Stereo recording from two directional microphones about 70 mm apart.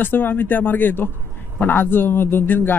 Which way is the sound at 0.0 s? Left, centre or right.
Left.